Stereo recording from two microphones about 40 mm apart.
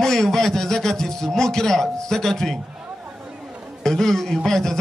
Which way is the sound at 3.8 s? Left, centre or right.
Centre.